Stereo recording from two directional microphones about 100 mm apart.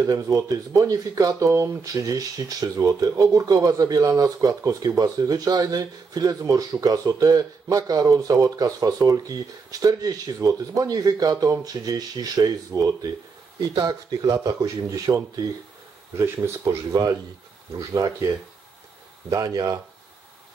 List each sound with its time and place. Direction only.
0.0 s speech: 35° right (ahead or behind)
16.2 s speech: 25° right (ahead or behind)
16.6 s speech: 40° right (ahead or behind)
19.3 s speech: 40° right (ahead or behind)